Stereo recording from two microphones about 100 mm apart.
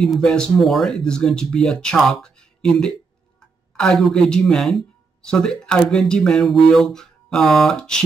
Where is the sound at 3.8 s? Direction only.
5° left (ahead or behind).